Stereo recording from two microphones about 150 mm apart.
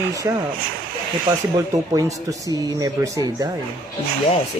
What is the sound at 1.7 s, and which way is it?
Speech, 20° right (ahead or behind).